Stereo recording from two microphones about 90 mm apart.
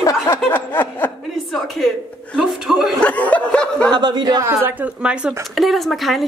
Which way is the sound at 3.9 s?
55° right (ahead or behind).